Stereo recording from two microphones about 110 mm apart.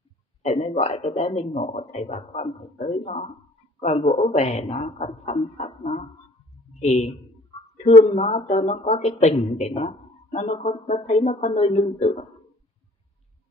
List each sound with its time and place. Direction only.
0.4 s speech: 70° left (ahead or behind); by 12.3 s 85° left